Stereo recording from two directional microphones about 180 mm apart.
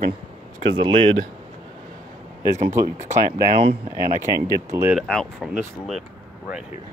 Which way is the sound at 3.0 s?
40° right (ahead or behind).